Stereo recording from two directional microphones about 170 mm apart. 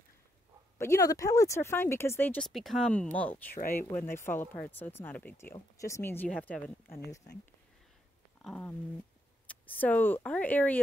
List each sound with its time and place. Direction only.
0.7 s speech: 15° left (ahead or behind)
8.5 s speech: 10° left (ahead or behind)